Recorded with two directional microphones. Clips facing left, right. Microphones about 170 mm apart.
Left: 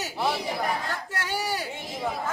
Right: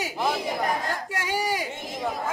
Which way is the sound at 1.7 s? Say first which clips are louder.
Right 1 dB; centre (ahead or behind).